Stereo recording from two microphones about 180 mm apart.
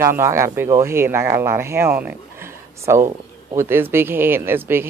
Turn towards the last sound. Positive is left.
turn(degrees=-10)  # may be behind; listen again after turning